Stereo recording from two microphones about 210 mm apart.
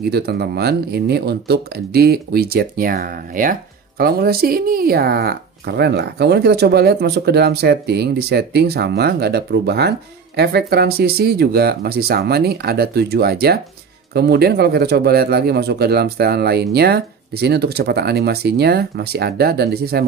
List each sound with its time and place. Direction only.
0.0 s speech: 50° right (ahead or behind)